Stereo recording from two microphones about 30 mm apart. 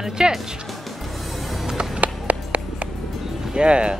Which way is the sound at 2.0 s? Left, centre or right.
Right.